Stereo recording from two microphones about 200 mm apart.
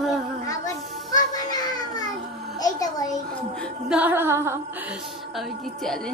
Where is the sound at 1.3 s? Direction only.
20° left (ahead or behind).